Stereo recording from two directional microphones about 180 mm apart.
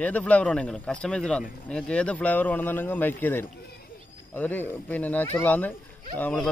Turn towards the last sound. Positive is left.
turn(degrees=5)  # may be behind; listen again after turning